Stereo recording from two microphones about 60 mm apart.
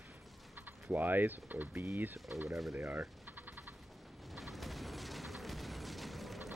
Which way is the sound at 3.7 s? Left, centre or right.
Centre.